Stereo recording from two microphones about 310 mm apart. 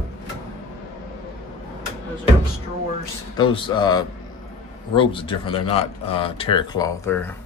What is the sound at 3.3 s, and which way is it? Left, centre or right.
Speech, centre.